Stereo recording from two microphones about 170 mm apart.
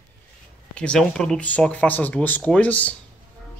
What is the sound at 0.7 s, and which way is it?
Speech, 5° left (ahead or behind).